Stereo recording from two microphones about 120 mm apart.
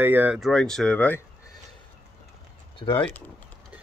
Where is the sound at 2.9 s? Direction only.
15° left (ahead or behind).